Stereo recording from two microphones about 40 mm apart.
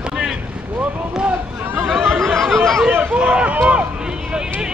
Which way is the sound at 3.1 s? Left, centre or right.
Right.